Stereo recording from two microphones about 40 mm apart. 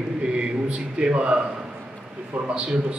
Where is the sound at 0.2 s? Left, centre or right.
Right.